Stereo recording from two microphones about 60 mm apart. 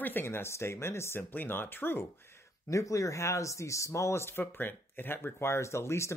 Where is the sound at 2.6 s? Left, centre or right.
Left.